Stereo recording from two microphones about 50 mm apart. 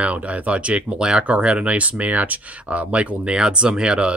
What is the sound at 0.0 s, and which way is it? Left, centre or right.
Speech, right.